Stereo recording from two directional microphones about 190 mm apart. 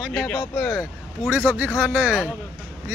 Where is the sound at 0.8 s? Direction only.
5° right (ahead or behind).